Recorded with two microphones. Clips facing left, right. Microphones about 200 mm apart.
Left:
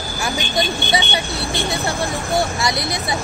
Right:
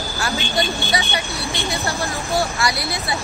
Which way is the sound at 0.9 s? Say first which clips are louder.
Left 2 dB; 30° left (ahead or behind).